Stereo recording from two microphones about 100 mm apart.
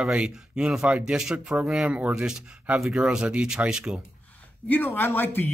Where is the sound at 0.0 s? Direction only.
10° right (ahead or behind).